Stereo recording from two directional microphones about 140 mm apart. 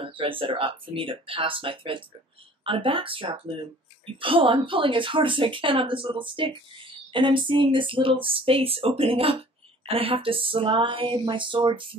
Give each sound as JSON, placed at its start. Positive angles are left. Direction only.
{"t": 0.0, "sound": "speech", "side_deg": -40}